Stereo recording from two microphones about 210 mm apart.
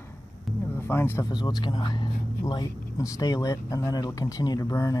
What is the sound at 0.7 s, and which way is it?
Speech, 10° left (ahead or behind).